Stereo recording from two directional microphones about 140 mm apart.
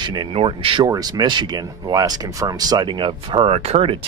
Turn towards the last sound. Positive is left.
turn(degrees=-45)  # may be behind; listen again after turning